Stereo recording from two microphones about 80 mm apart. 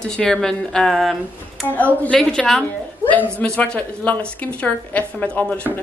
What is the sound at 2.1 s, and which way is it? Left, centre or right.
Speech, centre.